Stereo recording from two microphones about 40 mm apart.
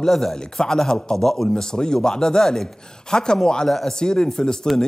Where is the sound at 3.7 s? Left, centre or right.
Centre.